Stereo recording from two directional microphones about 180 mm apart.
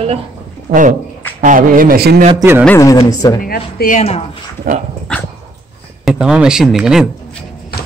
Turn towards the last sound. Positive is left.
turn(degrees=-5)  # may be behind; listen again after turning